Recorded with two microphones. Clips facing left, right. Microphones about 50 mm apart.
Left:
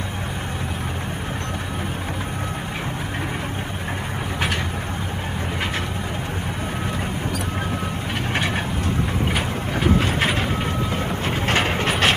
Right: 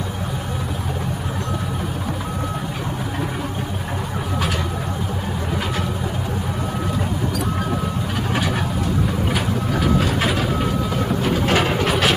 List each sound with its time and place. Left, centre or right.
9.7 s vehicle: left